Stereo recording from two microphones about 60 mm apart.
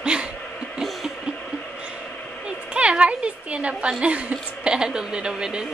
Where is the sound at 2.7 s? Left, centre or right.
Centre.